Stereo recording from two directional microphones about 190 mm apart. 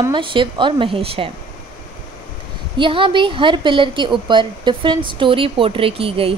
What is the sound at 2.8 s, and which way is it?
A woman's voice, 25° right (ahead or behind).